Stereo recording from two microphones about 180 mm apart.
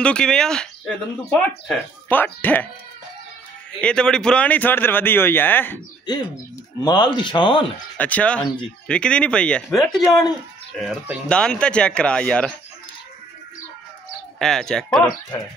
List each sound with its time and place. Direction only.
0.0 s speech: 5° left (ahead or behind)
3.8 s speech: 5° left (ahead or behind)
6.8 s speech: 25° left (ahead or behind)
8.0 s speech: 10° left (ahead or behind)
14.4 s speech: centre (ahead or behind)